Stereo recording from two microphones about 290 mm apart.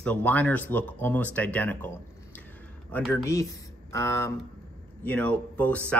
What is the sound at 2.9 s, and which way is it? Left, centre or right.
Speech, centre.